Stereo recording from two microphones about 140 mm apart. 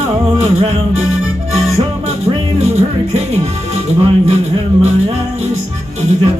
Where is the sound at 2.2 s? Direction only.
50° right (ahead or behind).